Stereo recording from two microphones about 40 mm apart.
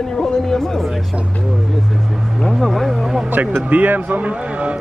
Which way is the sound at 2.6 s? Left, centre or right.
Centre.